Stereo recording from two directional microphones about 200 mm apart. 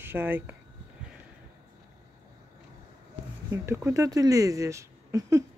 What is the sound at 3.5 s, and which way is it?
Speech, 15° right (ahead or behind).